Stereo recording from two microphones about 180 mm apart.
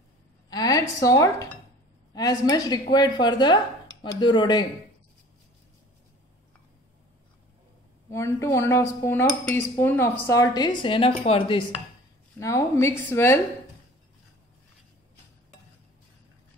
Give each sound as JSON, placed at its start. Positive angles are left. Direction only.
{"t": 0.5, "sound": "dishes", "side_deg": 20}
{"t": 2.1, "sound": "speech", "side_deg": 20}
{"t": 8.1, "sound": "speech", "side_deg": 15}
{"t": 12.4, "sound": "speech", "side_deg": 15}